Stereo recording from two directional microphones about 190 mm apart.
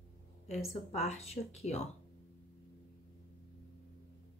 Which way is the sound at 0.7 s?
35° left (ahead or behind).